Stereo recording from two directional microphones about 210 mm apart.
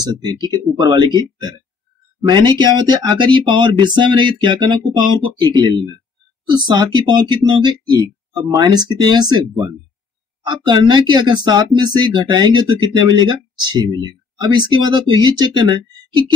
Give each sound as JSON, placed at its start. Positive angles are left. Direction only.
{"t": 0.0, "sound": "speech", "side_deg": -20}
{"t": 10.7, "sound": "speech", "side_deg": -20}